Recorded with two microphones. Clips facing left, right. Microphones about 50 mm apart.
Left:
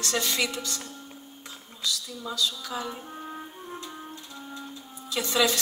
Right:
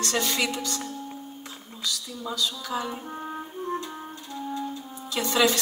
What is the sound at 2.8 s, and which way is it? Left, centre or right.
Music, centre.